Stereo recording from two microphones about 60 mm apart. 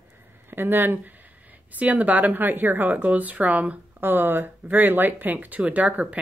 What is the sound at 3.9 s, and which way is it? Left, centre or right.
Speech, right.